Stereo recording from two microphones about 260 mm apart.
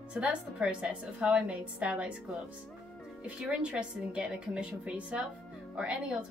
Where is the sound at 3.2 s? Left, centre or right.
Centre.